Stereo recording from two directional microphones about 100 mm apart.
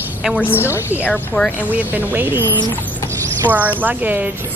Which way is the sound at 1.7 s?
20° right (ahead or behind).